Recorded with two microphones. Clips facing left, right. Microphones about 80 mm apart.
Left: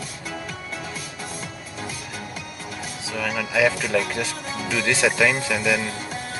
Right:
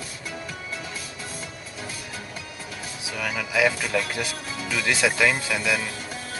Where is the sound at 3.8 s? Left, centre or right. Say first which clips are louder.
Left 3 dB; centre.